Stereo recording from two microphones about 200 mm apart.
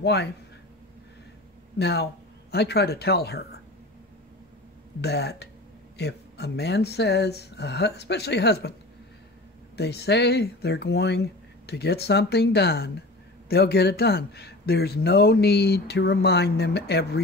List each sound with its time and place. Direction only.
0.0 s speech: 55° left (ahead or behind)
1.8 s speech: 55° left (ahead or behind)
5.0 s speech: 55° left (ahead or behind)
9.8 s speech: 55° left (ahead or behind)